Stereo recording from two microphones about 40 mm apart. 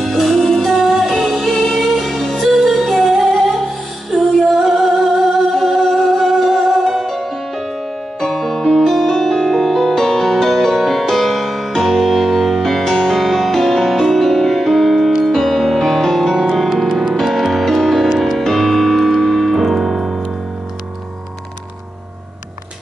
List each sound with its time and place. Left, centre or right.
0.0 s music: centre
4.6 s music: centre
16.9 s music: centre
17.2 s music: centre